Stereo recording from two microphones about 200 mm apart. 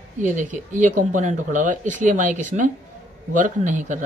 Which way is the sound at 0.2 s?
40° right (ahead or behind).